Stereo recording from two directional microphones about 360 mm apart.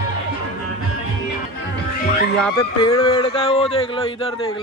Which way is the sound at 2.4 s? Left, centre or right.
Centre.